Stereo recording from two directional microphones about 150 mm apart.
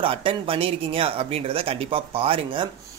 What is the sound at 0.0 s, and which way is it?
Speech, 35° right (ahead or behind).